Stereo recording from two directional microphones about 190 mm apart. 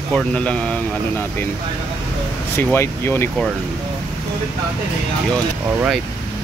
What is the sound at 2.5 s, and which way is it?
Speech, 10° left (ahead or behind).